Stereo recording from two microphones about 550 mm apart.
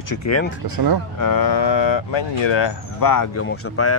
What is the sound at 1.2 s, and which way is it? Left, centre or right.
Speech, left.